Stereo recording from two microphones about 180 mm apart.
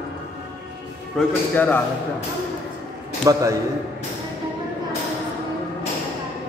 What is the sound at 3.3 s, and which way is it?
Speech, 20° right (ahead or behind).